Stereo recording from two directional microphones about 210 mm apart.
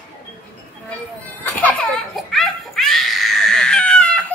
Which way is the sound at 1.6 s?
Centre (ahead or behind).